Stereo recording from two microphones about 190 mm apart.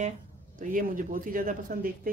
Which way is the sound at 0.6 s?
45° right (ahead or behind).